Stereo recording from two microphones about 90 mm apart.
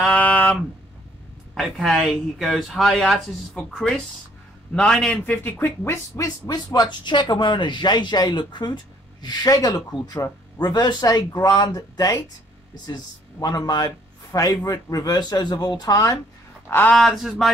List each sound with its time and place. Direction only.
0.0 s a sound: 15° left (ahead or behind)
1.5 s a man's voice: centre (ahead or behind)
5.2 s speech: 20° left (ahead or behind); by 16.2 s 40° left (ahead or behind)
16.6 s speech: 20° left (ahead or behind)
16.9 s speech: centre (ahead or behind)